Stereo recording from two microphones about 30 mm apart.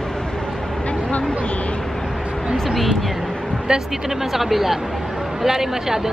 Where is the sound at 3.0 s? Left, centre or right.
Centre.